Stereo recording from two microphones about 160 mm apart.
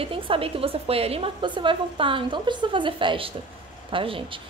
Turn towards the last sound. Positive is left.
turn(degrees=-35)  # may be behind; listen again after turning